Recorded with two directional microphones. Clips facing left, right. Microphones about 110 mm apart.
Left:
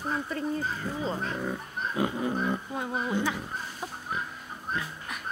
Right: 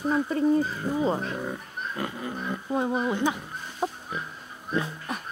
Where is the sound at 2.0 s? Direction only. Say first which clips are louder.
Left 5 dB; 20° left (ahead or behind).